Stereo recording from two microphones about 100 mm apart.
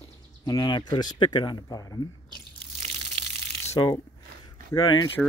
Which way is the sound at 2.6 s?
85° right.